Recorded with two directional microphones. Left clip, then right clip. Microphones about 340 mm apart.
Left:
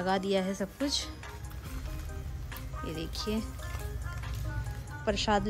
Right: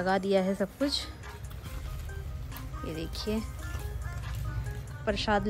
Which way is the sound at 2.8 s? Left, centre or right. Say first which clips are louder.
Right 1 dB; centre.